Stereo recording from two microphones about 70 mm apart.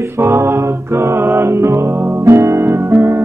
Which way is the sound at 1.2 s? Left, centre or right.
Right.